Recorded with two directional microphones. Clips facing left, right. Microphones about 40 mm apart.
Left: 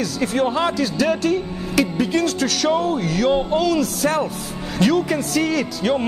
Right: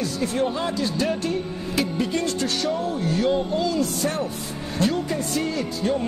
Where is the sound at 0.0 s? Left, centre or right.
Left.